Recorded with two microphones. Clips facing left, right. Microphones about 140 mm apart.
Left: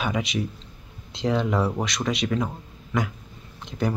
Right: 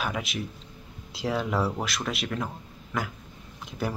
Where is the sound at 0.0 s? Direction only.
Centre (ahead or behind).